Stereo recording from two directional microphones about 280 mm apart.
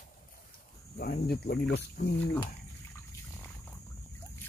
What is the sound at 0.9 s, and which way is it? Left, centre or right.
Speech, left.